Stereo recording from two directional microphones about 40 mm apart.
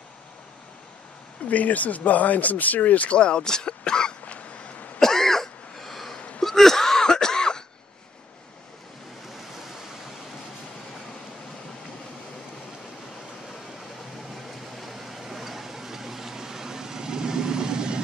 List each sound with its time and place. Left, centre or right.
1.4 s speech: left
3.2 s speech: left
4.2 s hiccup: left
5.0 s cough: centre
6.1 s hiccup: left
6.4 s cough: centre
9.5 s waves: centre
14.8 s a sound: centre; by 18.0 s right